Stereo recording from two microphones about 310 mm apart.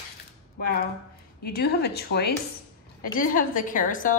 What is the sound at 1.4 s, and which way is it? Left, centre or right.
A woman's voice, left.